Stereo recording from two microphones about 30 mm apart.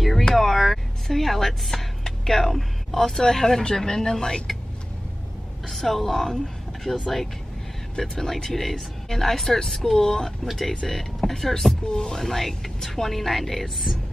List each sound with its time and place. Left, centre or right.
0.3 s a sound: centre
1.0 s speech: centre
5.7 s speech: centre
11.9 s speech: left
12.2 s speech: centre